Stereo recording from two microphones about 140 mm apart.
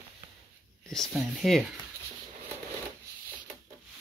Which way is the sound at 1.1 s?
Centre (ahead or behind).